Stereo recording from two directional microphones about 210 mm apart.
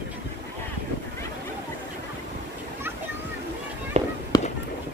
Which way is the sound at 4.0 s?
30° right (ahead or behind).